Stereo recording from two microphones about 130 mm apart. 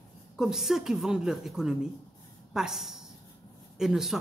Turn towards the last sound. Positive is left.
turn(degrees=-5)  # may be behind; listen again after turning